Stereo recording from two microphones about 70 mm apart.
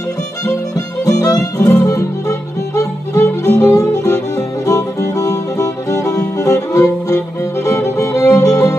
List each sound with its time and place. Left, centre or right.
0.5 s music: left